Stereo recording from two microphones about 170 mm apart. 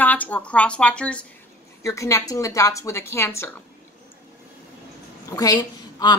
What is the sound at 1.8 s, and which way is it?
Speech, 20° left (ahead or behind).